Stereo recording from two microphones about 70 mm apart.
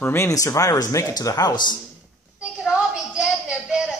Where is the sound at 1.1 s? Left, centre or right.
Left.